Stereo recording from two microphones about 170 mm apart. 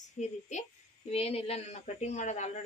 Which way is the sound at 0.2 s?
45° left (ahead or behind).